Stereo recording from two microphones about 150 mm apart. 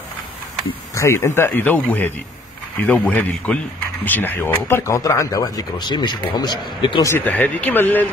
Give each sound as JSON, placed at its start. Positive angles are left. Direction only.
{"t": 0.9, "sound": "speech", "side_deg": 20}
{"t": 7.1, "sound": "speech", "side_deg": 10}